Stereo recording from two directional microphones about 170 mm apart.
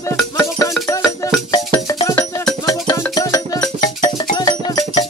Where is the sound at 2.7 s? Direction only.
20° left (ahead or behind).